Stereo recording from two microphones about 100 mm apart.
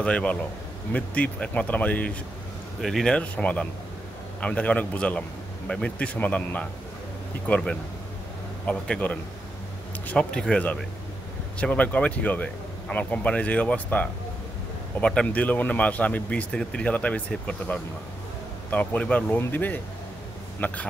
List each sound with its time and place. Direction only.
0.0 s speech: 10° left (ahead or behind)
2.8 s speech: 5° left (ahead or behind)